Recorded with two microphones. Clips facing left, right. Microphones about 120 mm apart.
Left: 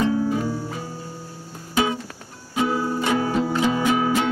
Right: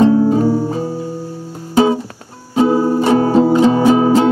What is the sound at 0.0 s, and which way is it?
Music, 35° right (ahead or behind).